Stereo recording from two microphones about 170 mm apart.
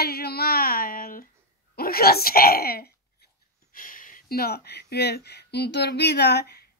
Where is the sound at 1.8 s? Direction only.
65° left (ahead or behind).